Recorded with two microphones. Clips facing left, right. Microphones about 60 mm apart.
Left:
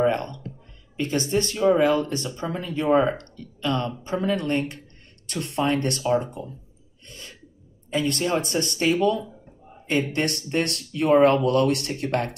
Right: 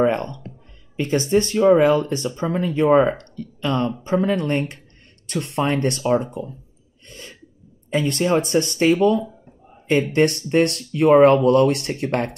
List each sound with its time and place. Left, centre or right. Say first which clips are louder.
0.0 s speech: right 3 dB; right
7.9 s speech: right 4 dB; right